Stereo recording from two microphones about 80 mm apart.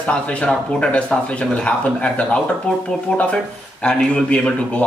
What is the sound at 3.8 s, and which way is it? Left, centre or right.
Speech, centre.